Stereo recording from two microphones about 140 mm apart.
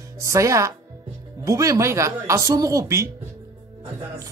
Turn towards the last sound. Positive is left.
turn(degrees=-20)  # may be behind; listen again after turning